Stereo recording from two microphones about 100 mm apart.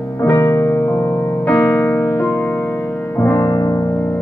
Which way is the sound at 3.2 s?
20° left (ahead or behind).